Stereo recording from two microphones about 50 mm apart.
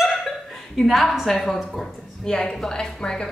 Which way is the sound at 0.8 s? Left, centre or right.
Centre.